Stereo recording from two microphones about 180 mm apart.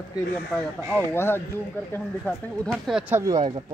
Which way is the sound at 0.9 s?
10° left (ahead or behind).